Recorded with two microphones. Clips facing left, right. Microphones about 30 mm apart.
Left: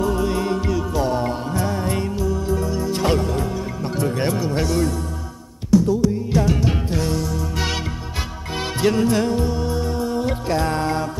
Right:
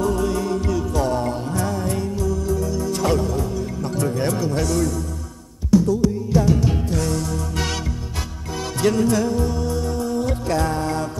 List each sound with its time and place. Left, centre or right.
0.0 s music: centre
0.3 s music: left
0.7 s music: centre; by 3.4 s left
3.9 s speech: left
5.9 s music: left
8.8 s speech: left
9.4 s music: left
10.7 s music: left